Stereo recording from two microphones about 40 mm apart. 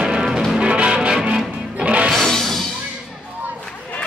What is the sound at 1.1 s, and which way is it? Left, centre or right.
Music, centre.